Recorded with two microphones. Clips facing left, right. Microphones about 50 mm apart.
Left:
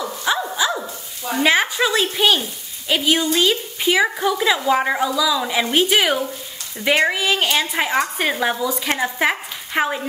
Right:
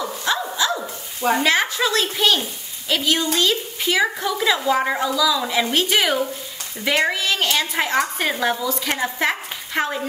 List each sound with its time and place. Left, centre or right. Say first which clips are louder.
0.2 s dog: left 2 dB; centre
1.4 s a woman's voice: left 2 dB; centre